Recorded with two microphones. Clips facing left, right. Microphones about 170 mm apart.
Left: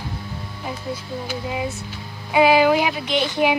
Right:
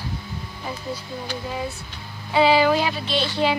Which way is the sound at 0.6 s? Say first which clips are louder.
Left 2 dB; 10° left (ahead or behind).